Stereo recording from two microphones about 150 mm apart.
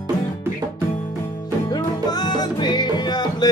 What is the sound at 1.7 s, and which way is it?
Music, 25° left (ahead or behind).